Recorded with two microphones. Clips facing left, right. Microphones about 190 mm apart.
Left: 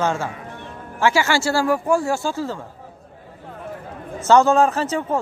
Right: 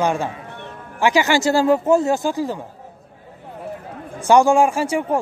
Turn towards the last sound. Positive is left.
turn(degrees=-10)  # may be behind; listen again after turning